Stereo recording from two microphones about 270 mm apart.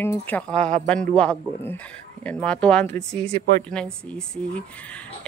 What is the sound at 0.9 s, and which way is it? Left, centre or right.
A woman's voice, centre.